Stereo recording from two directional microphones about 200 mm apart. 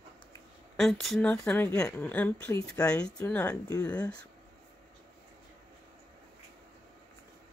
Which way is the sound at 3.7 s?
20° left (ahead or behind).